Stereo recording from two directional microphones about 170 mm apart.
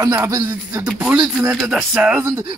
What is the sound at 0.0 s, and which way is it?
Speech, 20° right (ahead or behind).